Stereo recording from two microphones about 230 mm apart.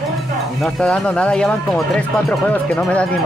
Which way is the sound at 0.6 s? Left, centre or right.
Centre.